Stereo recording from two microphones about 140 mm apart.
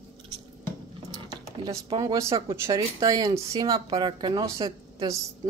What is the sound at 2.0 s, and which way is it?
Speech, 25° right (ahead or behind).